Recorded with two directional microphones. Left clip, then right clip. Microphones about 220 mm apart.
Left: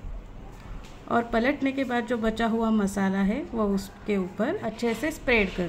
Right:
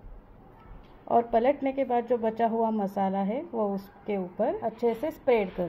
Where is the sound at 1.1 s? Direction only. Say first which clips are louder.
Right 2 dB; 10° right (ahead or behind).